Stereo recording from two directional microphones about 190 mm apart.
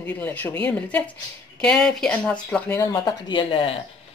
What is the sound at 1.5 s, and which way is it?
Speech, 5° left (ahead or behind).